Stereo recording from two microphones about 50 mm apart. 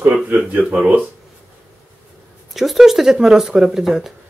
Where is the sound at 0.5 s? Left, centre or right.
Right.